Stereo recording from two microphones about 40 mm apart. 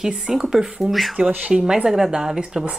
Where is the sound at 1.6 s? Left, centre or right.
Centre.